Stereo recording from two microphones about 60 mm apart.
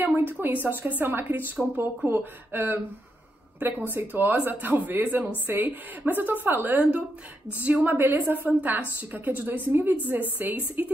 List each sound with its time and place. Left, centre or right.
0.0 s a woman's voice: right